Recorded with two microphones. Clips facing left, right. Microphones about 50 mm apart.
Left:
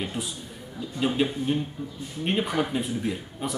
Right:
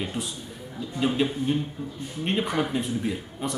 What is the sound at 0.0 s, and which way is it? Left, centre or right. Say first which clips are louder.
Speech: even; centre.